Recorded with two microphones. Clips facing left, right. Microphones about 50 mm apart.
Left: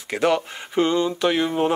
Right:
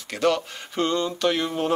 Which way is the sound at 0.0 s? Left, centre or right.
Centre.